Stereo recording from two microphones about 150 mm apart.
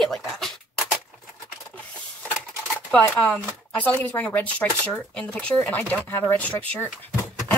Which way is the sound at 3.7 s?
10° left (ahead or behind).